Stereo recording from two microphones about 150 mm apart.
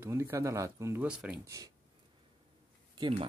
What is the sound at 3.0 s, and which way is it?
Speech, 35° right (ahead or behind).